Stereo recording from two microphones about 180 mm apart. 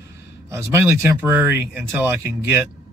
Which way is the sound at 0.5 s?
15° right (ahead or behind).